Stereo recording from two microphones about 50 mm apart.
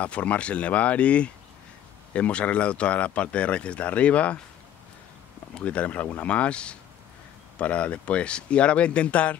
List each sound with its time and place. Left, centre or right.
0.0 s speech: left
5.6 s speech: left